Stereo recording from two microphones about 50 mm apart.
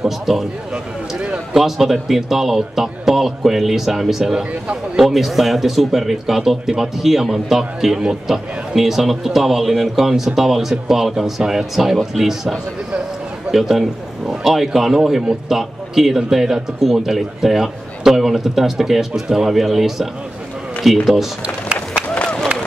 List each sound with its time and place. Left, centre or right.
0.0 s a man's voice: centre
1.5 s a man's voice: centre
22.1 s run: left